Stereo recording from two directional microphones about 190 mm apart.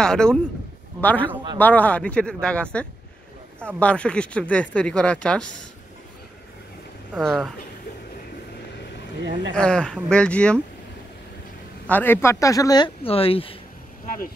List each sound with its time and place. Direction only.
0.0 s speech: 5° left (ahead or behind)
7.2 s speech: centre (ahead or behind)
9.5 s speech: 5° left (ahead or behind)
11.9 s speech: 10° left (ahead or behind); by 13.6 s 30° left (ahead or behind)
14.0 s speech: 45° left (ahead or behind)